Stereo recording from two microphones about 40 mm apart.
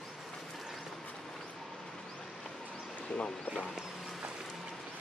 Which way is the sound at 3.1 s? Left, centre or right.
Left.